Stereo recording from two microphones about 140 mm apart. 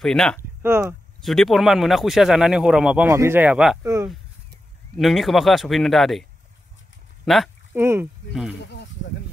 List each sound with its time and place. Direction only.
0.0 s speech: 5° left (ahead or behind)
0.6 s speech: 15° right (ahead or behind)
1.2 s speech: centre (ahead or behind)
3.1 s speech: 20° right (ahead or behind)
3.8 s speech: 20° right (ahead or behind)
4.9 s speech: centre (ahead or behind)
7.2 s speech: centre (ahead or behind)
7.7 s speech: 15° right (ahead or behind)
8.3 s speech: 5° right (ahead or behind)